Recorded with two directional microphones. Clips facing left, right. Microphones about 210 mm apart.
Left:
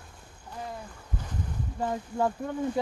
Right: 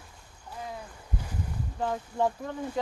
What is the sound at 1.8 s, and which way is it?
Speech, 5° left (ahead or behind).